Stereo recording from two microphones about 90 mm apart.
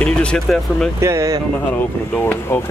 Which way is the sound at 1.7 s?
20° left (ahead or behind).